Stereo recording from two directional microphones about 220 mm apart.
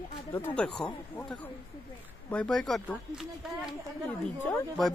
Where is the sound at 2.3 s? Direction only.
5° left (ahead or behind).